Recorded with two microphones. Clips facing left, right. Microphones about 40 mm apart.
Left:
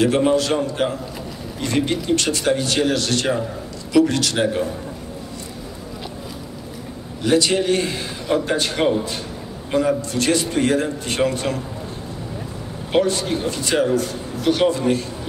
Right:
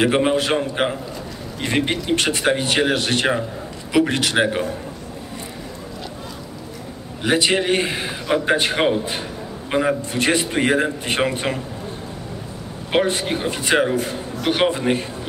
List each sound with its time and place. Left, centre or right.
0.0 s a man's voice: right
7.2 s a man's voice: right
12.9 s a man's voice: right